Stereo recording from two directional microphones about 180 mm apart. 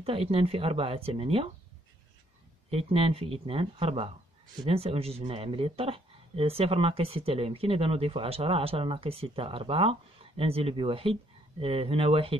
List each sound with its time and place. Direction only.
0.0 s speech: 35° right (ahead or behind)
2.7 s speech: 35° right (ahead or behind)